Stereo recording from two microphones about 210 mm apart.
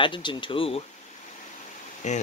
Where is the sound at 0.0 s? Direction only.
25° left (ahead or behind).